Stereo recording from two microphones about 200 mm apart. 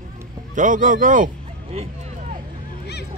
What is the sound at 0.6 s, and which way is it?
A man's voice, 40° right (ahead or behind).